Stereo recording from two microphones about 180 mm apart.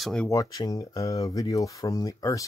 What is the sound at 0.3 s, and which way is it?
Speech, 20° left (ahead or behind).